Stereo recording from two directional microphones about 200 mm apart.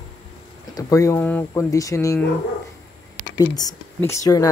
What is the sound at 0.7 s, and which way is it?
Speech, 15° left (ahead or behind).